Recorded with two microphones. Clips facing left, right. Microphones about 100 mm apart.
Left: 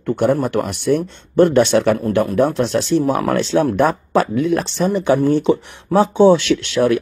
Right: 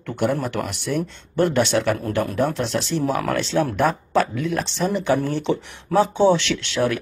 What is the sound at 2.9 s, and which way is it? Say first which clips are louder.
Speech: left 6 dB; 25° left (ahead or behind).